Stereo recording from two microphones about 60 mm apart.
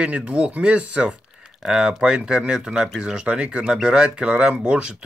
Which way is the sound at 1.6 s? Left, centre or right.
Centre.